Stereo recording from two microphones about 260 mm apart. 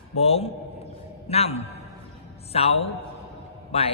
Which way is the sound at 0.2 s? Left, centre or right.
Left.